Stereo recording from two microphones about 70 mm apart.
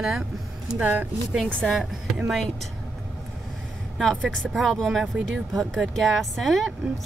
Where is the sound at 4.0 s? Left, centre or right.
Centre.